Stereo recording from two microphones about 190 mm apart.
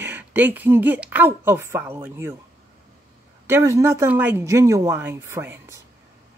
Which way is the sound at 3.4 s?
15° right (ahead or behind).